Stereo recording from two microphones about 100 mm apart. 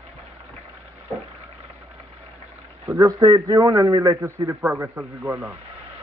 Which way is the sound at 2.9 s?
35° right (ahead or behind).